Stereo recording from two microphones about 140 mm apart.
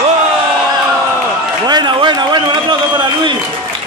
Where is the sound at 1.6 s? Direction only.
30° right (ahead or behind).